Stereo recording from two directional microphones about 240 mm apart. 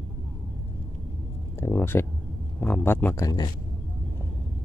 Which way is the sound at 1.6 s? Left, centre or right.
Centre.